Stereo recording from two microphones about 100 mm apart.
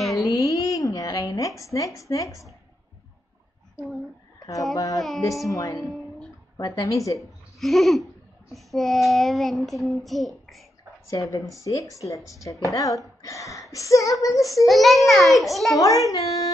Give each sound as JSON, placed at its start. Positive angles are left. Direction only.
{"t": 0.0, "sound": "a sound", "side_deg": 0}
{"t": 0.3, "sound": "a sound", "side_deg": 35}
{"t": 1.6, "sound": "speech", "side_deg": 35}
{"t": 4.4, "sound": "a sound", "side_deg": 35}
{"t": 4.7, "sound": "speech", "side_deg": 35}
{"t": 7.2, "sound": "a child's voice", "side_deg": 0}
{"t": 11.1, "sound": "speech", "side_deg": 35}
{"t": 14.6, "sound": "a child's voice", "side_deg": 0}
{"t": 15.8, "sound": "speech", "side_deg": 35}